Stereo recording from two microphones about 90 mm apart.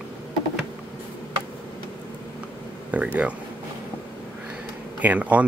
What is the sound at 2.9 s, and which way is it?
Speech, 15° right (ahead or behind).